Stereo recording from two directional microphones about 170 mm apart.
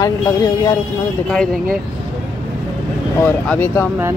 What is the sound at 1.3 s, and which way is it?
Speech, 5° left (ahead or behind).